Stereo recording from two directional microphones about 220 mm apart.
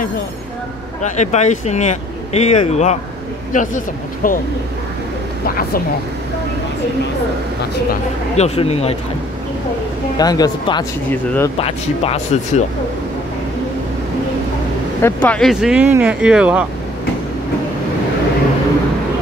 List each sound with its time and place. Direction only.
1.0 s speech: 30° left (ahead or behind)
8.4 s speech: 30° left (ahead or behind)
10.1 s speech: 15° left (ahead or behind)
11.5 s speech: 25° left (ahead or behind)
15.0 s speech: 10° left (ahead or behind)